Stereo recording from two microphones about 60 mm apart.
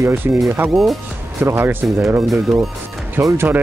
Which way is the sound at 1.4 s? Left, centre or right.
Right.